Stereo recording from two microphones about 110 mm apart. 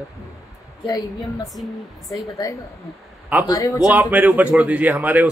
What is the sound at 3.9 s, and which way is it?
Speech, 15° right (ahead or behind).